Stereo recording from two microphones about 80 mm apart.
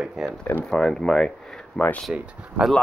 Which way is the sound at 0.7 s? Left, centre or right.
Centre.